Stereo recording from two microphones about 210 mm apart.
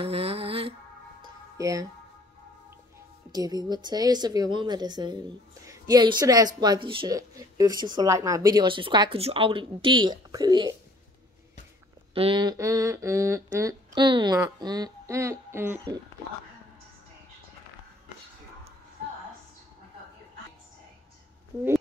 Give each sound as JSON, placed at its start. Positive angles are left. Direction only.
{"t": 0.0, "sound": "music", "side_deg": -30}
{"t": 1.6, "sound": "speech", "side_deg": -15}
{"t": 3.3, "sound": "a woman's voice", "side_deg": -20}
{"t": 12.1, "sound": "speech", "side_deg": -25}
{"t": 21.5, "sound": "speech", "side_deg": -15}